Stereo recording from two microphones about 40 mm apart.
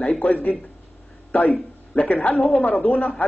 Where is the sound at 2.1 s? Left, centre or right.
Left.